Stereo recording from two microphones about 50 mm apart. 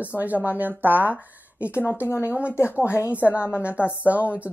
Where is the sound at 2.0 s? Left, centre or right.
Left.